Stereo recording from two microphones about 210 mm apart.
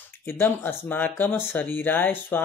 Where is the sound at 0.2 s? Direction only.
10° left (ahead or behind).